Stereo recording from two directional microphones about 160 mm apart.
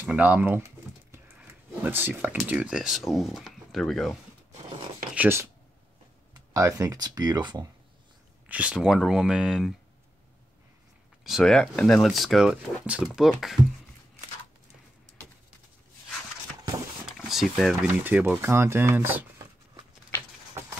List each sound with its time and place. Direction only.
0.0 s speech: 10° right (ahead or behind)
1.8 s speech: 15° right (ahead or behind); by 4.2 s centre (ahead or behind)
5.1 s speech: 15° right (ahead or behind)
8.5 s speech: 5° right (ahead or behind)
11.2 s speech: centre (ahead or behind)
17.0 s speech: centre (ahead or behind)